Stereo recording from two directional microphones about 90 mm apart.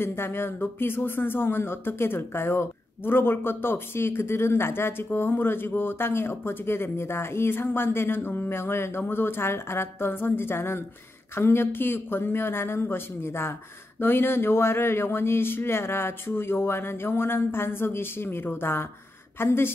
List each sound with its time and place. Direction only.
0.0 s speech: 25° left (ahead or behind)